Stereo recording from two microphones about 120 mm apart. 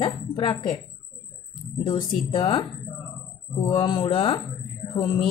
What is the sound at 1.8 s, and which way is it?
A woman's voice, 50° left (ahead or behind).